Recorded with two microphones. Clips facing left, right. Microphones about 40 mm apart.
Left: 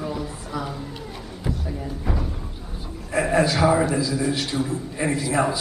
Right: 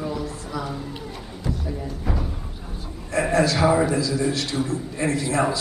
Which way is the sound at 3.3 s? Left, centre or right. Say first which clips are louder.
Even; centre.